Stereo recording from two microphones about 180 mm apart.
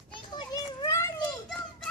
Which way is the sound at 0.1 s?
25° left (ahead or behind).